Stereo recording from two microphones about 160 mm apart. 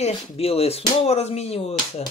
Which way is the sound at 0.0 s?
40° left (ahead or behind).